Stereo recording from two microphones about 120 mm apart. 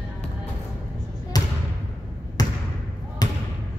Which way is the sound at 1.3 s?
35° left (ahead or behind).